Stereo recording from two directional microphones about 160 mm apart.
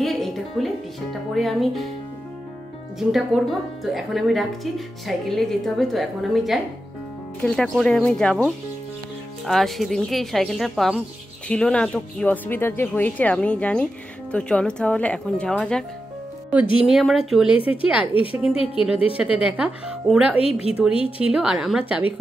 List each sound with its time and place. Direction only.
0.0 s music: centre (ahead or behind)
1.3 s speech: centre (ahead or behind)
3.0 s speech: centre (ahead or behind)
16.8 s speech: centre (ahead or behind)
20.3 s a woman's voice: 40° left (ahead or behind)
21.2 s speech: 5° right (ahead or behind)